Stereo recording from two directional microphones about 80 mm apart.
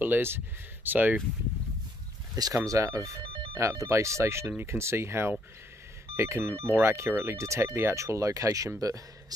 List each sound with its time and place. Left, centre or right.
0.0 s speech: right
2.5 s speech: right